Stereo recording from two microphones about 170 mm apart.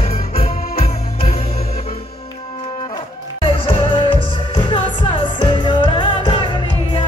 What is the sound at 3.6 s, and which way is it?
Music, 30° left (ahead or behind).